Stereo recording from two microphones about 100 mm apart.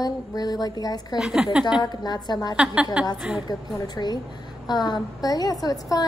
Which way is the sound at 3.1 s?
5° right (ahead or behind).